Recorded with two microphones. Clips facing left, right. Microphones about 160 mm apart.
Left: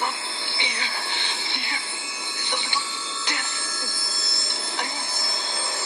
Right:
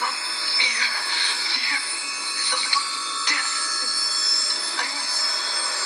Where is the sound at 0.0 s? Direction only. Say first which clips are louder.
Left 2 dB; 20° left (ahead or behind).